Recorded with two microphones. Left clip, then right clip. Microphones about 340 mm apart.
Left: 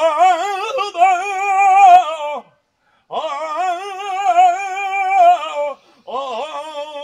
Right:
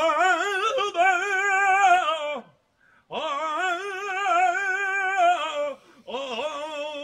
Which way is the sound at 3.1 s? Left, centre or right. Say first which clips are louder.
Left 6 dB; centre.